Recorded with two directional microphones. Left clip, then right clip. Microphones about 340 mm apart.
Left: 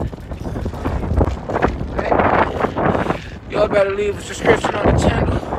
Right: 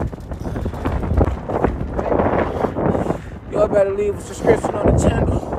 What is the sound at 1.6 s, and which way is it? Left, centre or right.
Wind noise, centre.